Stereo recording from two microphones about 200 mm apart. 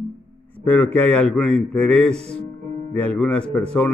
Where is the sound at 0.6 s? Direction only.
10° left (ahead or behind).